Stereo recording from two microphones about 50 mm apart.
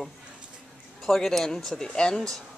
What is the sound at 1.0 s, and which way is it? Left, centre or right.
Speech, centre.